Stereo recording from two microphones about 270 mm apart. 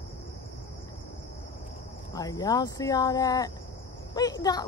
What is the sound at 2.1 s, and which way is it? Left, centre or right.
Speech, centre.